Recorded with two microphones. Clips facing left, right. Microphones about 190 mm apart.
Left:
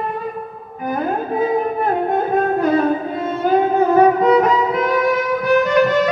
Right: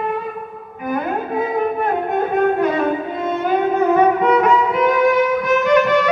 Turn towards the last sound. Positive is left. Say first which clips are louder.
# even
turn(degrees=35)  # may be behind; listen again after turning